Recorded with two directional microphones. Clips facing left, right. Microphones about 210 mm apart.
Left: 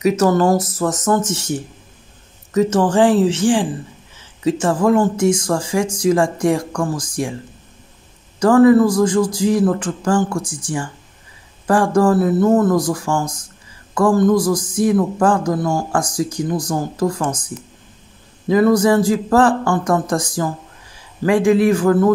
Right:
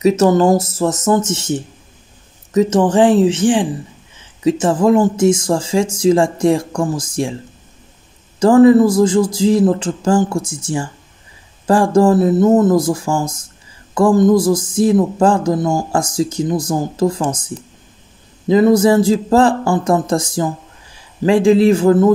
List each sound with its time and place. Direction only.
0.0 s a man's voice: 25° right (ahead or behind)
8.4 s a man's voice: 25° right (ahead or behind)